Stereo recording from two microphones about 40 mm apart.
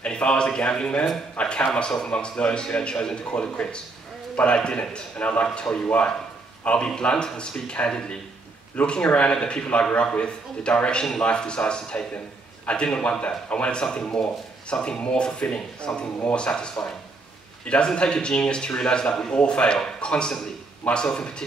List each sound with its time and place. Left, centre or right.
0.0 s speech: left
1.8 s a man's voice: centre
19.3 s speech: left